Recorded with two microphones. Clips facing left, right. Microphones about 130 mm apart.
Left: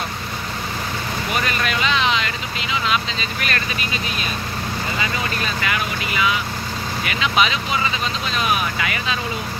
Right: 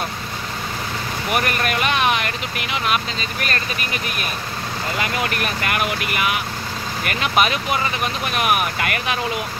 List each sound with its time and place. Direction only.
1.3 s vehicle: 55° right (ahead or behind)
3.2 s speech: 40° right (ahead or behind)
4.9 s speech: 75° right (ahead or behind)
7.1 s speech: 50° right (ahead or behind)